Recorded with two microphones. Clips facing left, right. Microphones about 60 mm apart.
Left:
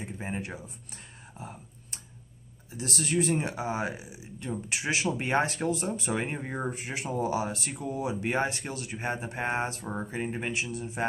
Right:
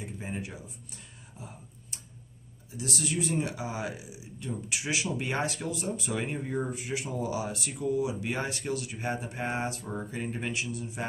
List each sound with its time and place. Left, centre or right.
0.0 s speech: left
2.8 s speech: left